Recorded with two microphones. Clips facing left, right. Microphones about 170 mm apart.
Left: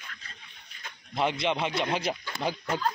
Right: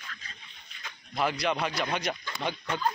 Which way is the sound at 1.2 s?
25° left (ahead or behind).